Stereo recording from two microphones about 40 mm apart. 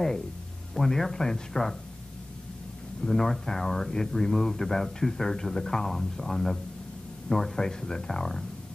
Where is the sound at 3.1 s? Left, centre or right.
Centre.